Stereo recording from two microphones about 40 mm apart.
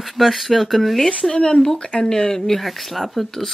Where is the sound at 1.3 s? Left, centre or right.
Left.